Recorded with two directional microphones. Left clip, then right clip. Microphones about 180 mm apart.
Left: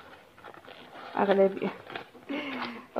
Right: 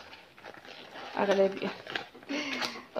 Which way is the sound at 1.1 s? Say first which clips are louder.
Left 3 dB; 35° left (ahead or behind).